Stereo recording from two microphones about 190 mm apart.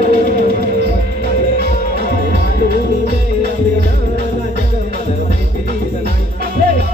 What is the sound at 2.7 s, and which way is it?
Music, 60° right (ahead or behind).